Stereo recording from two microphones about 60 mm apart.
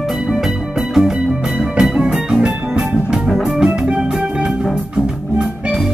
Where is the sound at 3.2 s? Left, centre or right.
Centre.